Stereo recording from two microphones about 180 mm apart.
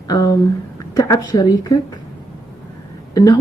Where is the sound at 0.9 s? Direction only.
20° left (ahead or behind).